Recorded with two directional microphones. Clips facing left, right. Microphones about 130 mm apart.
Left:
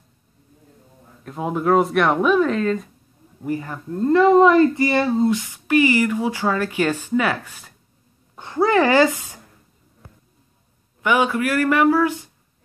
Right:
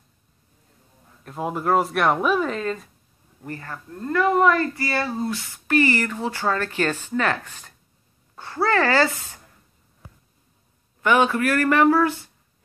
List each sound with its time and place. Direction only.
1.2 s speech: centre (ahead or behind)
3.4 s speech: 15° left (ahead or behind)
3.9 s a woman's voice: 25° left (ahead or behind)
11.0 s speech: 10° left (ahead or behind)